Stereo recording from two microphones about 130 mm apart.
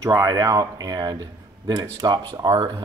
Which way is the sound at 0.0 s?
30° right (ahead or behind).